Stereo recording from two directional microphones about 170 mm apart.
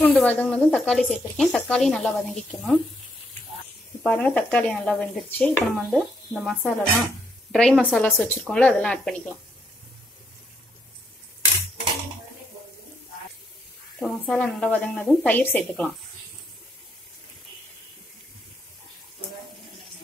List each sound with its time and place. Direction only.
0.0 s speech: 10° left (ahead or behind)
4.0 s a woman's voice: 5° left (ahead or behind)
13.9 s speech: centre (ahead or behind)